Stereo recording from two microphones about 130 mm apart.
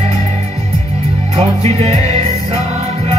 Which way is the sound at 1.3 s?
55° right (ahead or behind).